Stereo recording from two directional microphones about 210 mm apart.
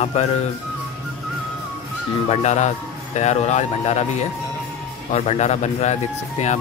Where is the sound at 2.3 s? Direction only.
30° left (ahead or behind).